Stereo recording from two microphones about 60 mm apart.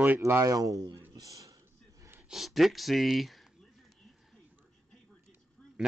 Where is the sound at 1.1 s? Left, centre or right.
Right.